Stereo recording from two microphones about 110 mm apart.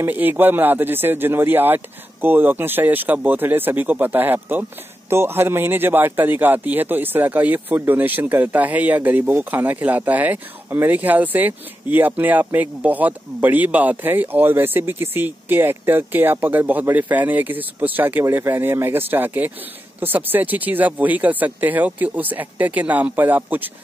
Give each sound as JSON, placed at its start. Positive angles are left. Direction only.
{"t": 0.0, "sound": "a man's voice", "side_deg": -15}